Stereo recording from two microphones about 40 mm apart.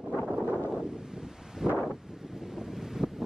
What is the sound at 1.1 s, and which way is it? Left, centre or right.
Wind, centre.